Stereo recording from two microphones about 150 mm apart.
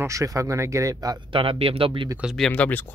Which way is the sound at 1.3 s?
40° right (ahead or behind).